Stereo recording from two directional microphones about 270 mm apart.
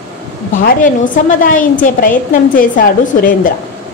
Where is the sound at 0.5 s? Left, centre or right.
Left.